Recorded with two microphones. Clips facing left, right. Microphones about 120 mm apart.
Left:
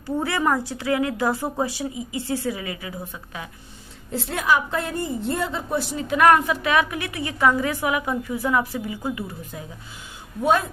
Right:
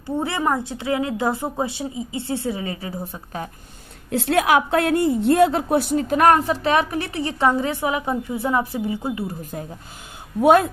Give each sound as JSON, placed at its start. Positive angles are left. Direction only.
{"t": 0.0, "sound": "a woman's voice", "side_deg": -20}
{"t": 4.1, "sound": "a woman's voice", "side_deg": -70}
{"t": 10.4, "sound": "a woman's voice", "side_deg": -60}